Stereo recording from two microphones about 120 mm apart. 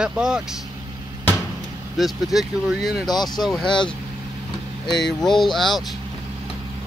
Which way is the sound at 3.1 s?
35° left (ahead or behind).